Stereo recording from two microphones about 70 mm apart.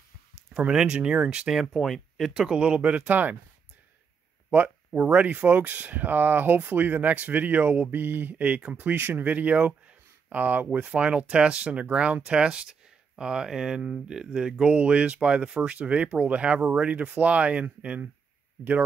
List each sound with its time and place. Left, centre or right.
0.5 s speech: centre
2.3 s speech: centre
4.5 s speech: right